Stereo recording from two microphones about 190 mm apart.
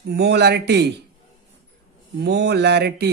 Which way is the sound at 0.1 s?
60° right (ahead or behind).